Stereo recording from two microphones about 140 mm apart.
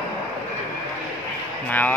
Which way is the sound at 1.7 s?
10° left (ahead or behind).